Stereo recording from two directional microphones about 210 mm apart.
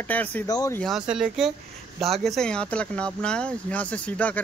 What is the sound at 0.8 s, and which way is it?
Speech, centre (ahead or behind).